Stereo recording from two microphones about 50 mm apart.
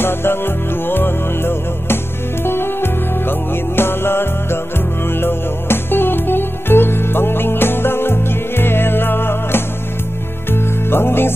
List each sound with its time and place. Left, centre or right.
0.0 s music: left